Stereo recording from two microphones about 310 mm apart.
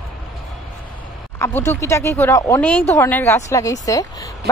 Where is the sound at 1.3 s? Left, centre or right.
Centre.